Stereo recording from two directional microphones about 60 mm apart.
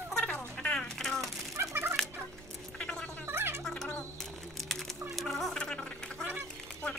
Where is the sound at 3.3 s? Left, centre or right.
Right.